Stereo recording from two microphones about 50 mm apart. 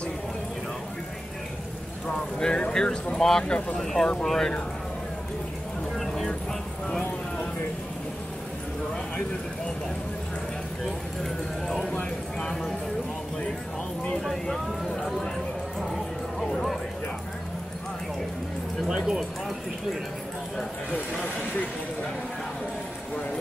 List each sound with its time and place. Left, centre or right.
2.0 s speech: centre
5.9 s vehicle: centre
11.6 s speech: centre
14.2 s speech: centre
15.8 s music: centre
18.9 s speech: centre